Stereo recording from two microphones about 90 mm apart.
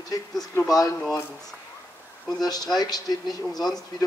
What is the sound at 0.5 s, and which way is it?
Speech, 30° left (ahead or behind).